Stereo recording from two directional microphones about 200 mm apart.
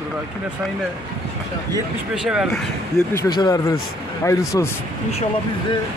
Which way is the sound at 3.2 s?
20° left (ahead or behind).